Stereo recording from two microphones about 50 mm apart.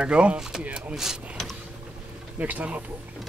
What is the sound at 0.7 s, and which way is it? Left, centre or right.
Speech, right.